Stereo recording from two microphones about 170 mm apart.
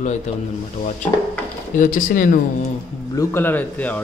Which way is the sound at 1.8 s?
50° left (ahead or behind).